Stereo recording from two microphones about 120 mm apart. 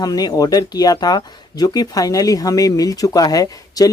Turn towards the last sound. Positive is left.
turn(degrees=30)  # may be behind; listen again after turning